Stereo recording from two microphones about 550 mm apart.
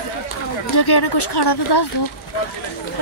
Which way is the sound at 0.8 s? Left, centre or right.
Left.